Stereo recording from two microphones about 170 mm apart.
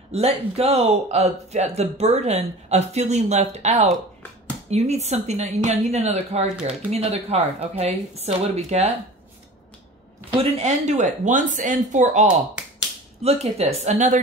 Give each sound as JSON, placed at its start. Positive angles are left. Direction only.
{"t": 0.1, "sound": "speech", "side_deg": -35}
{"t": 10.3, "sound": "speech", "side_deg": -45}